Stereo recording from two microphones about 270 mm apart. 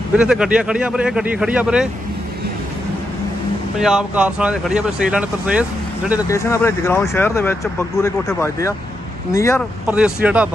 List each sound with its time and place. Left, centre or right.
0.1 s speech: centre
3.8 s speech: centre
6.2 s speech: centre
9.8 s speech: centre